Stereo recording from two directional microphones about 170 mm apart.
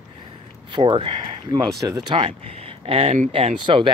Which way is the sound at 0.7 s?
25° right (ahead or behind).